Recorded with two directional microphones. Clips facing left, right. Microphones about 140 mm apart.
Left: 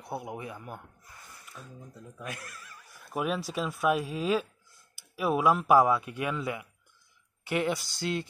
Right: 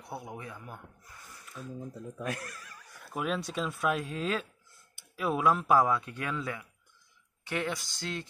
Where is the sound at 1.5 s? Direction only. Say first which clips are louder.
Right 7 dB; centre (ahead or behind).